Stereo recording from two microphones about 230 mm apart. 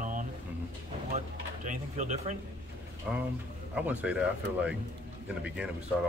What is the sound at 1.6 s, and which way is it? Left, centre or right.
Speech, right.